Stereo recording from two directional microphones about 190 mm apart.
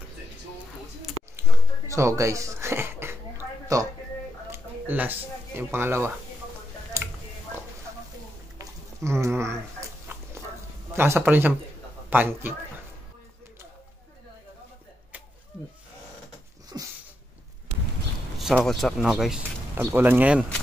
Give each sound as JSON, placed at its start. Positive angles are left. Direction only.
{"t": 1.9, "sound": "a sound", "side_deg": -15}
{"t": 4.5, "sound": "speech", "side_deg": -10}
{"t": 7.0, "sound": "a sound", "side_deg": -15}
{"t": 8.5, "sound": "dog", "side_deg": -15}
{"t": 11.0, "sound": "speech", "side_deg": -10}
{"t": 16.7, "sound": "sneeze", "side_deg": -15}
{"t": 18.4, "sound": "speech", "side_deg": 0}